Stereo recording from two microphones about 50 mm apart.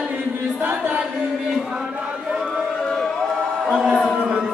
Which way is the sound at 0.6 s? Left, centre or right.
Right.